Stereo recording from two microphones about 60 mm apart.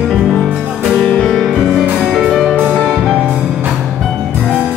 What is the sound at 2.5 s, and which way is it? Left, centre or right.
Music, right.